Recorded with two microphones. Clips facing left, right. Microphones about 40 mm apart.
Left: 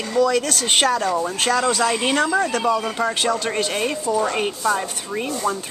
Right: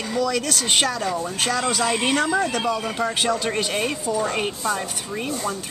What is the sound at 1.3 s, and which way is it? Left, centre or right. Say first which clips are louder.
Speech: left 3 dB; centre.